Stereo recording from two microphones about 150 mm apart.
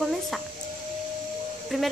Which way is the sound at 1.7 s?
Centre (ahead or behind).